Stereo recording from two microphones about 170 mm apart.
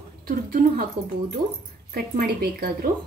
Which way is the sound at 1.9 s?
65° right (ahead or behind).